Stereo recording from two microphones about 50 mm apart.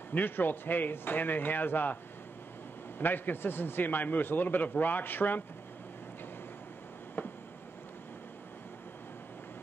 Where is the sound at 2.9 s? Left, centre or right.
Left.